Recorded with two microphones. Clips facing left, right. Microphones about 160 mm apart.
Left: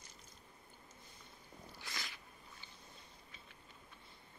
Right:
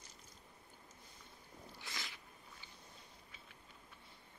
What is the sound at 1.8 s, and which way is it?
Cat, 20° right (ahead or behind).